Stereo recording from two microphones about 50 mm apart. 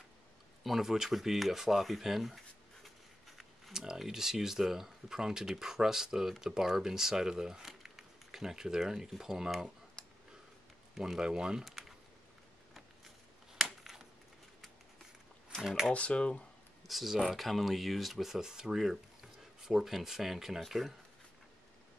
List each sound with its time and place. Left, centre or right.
0.7 s a sound: centre
3.7 s speech: centre
10.0 s a sound: centre
11.1 s speech: centre
11.6 s speech: centre
13.7 s a sound: centre
15.6 s speech: centre
15.9 s speech: left
16.8 s speech: centre